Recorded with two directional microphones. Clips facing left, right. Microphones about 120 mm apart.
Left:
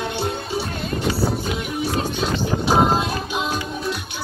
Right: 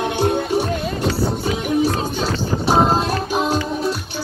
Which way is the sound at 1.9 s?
35° right (ahead or behind).